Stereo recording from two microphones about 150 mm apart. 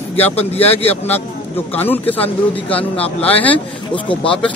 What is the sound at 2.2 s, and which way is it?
Speech, 40° left (ahead or behind).